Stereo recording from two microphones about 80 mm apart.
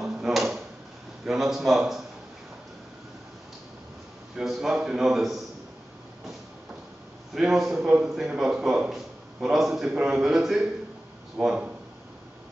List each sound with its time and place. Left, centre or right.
0.0 s drawer open or close: centre
1.2 s a man's voice: centre
4.4 s a man's voice: centre
7.3 s a man's voice: centre